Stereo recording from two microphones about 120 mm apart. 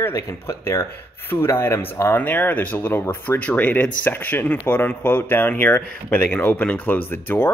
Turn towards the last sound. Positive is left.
turn(degrees=15)  # may be behind; listen again after turning